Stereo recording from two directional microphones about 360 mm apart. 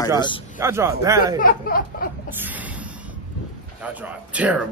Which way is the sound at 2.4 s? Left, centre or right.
Centre.